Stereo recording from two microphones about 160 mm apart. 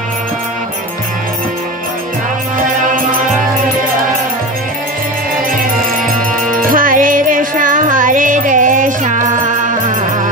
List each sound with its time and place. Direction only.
6.6 s music: 60° right (ahead or behind)